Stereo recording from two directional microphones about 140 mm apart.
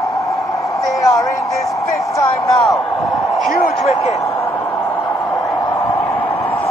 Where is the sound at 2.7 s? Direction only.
20° left (ahead or behind).